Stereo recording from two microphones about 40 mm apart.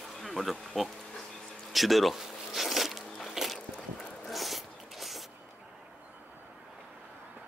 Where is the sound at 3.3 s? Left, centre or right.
Centre.